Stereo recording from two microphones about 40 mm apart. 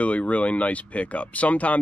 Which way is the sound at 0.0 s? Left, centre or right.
Left.